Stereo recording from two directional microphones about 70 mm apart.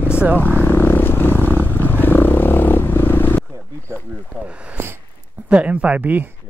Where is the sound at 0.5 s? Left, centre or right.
Left.